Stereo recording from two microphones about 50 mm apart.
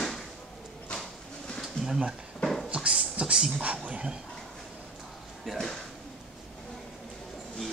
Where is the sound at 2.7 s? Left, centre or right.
Right.